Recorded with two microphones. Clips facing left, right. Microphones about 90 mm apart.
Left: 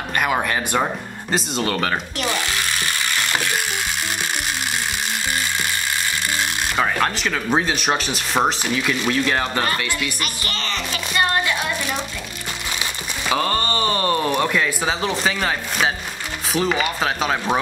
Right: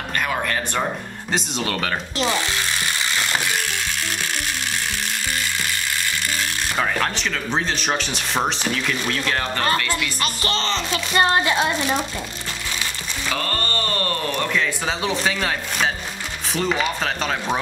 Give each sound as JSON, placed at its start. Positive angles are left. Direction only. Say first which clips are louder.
{"t": 0.1, "sound": "speech", "louder": "left 3 dB", "side_deg": 15}
{"t": 1.3, "sound": "speech", "louder": "left 2 dB", "side_deg": 0}
{"t": 2.1, "sound": "speech", "louder": "right 2 dB", "side_deg": -20}
{"t": 6.8, "sound": "speech", "louder": "left 2 dB", "side_deg": 5}
{"t": 10.2, "sound": "speech", "louder": "right 4 dB", "side_deg": -30}
{"t": 13.3, "sound": "speech", "louder": "left 5 dB", "side_deg": 15}